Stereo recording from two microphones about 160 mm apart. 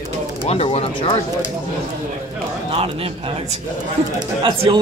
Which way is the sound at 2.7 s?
35° right (ahead or behind).